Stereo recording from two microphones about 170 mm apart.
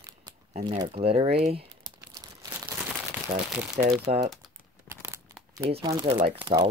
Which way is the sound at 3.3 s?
40° right (ahead or behind).